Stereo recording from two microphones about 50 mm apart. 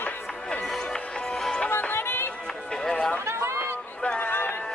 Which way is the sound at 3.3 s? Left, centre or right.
Right.